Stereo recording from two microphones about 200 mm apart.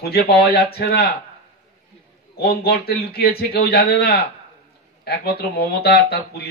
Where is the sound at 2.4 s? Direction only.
50° left (ahead or behind).